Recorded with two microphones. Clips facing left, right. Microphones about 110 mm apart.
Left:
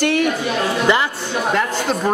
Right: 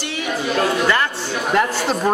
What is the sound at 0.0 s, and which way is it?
Chatter, 55° left (ahead or behind).